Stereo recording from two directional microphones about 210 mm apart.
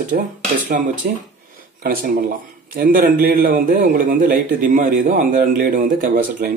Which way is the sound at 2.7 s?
40° right (ahead or behind).